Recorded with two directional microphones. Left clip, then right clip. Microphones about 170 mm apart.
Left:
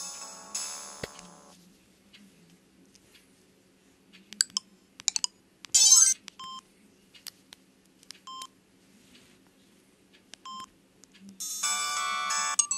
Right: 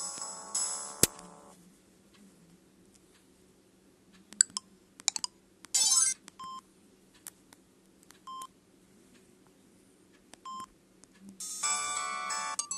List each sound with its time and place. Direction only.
0.0 s music: 20° right (ahead or behind)
4.3 s music: 25° right (ahead or behind)
7.2 s a sound: 20° right (ahead or behind)
8.1 s telephone dialing: 20° right (ahead or behind)
10.3 s telephone dialing: 20° right (ahead or behind)
11.2 s music: 20° right (ahead or behind)